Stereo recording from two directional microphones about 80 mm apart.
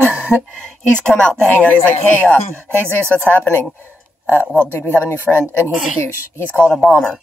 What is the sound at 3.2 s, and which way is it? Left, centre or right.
Speech, left.